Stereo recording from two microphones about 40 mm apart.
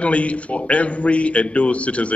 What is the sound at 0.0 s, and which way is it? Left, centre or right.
Speech, left.